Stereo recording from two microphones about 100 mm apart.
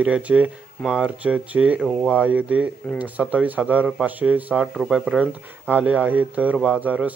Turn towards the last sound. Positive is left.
turn(degrees=-15)  # may be behind; listen again after turning